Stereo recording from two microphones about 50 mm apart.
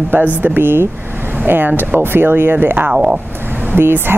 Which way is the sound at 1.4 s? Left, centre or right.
Right.